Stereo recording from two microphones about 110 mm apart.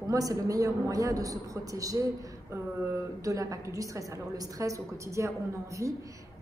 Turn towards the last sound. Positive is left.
turn(degrees=-30)  # may be behind; listen again after turning